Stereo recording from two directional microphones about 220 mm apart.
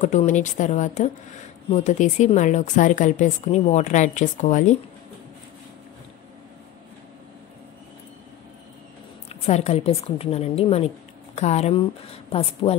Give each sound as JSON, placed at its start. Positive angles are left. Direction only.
{"t": 0.0, "sound": "a woman's voice", "side_deg": 35}
{"t": 9.3, "sound": "a woman's voice", "side_deg": 30}